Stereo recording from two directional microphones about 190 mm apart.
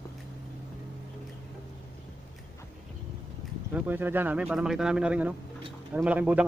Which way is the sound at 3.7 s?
10° right (ahead or behind).